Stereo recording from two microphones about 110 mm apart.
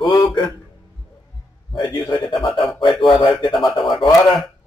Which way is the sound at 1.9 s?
45° left (ahead or behind).